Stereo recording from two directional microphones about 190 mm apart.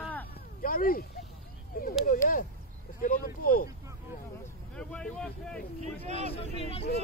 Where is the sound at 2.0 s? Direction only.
45° left (ahead or behind).